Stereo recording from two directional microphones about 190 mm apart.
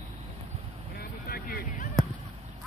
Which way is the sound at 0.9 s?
50° left (ahead or behind).